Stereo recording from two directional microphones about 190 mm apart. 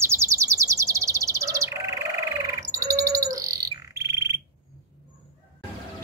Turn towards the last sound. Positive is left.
turn(degrees=-15)  # may be behind; listen again after turning